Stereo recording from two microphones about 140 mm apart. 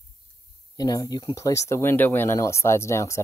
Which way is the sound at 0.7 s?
25° left (ahead or behind).